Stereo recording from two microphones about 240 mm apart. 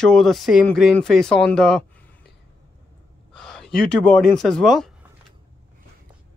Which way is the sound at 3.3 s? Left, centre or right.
Centre.